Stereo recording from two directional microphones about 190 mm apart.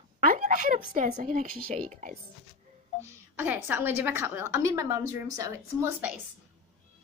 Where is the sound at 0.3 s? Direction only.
45° right (ahead or behind).